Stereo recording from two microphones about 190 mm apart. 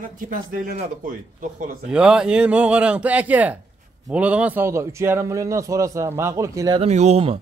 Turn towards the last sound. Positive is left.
turn(degrees=-30)  # may be behind; listen again after turning